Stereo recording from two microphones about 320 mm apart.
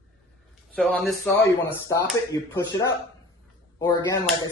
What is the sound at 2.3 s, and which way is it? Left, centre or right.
Speech, centre.